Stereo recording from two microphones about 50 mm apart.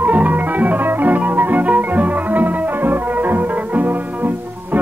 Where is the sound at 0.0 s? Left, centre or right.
Right.